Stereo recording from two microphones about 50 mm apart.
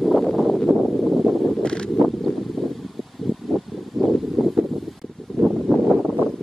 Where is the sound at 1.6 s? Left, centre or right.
Centre.